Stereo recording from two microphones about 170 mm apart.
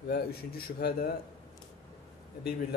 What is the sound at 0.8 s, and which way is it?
Speech, 70° left (ahead or behind).